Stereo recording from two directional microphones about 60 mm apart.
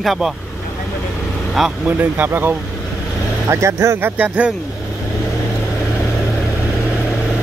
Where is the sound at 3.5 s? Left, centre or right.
Right.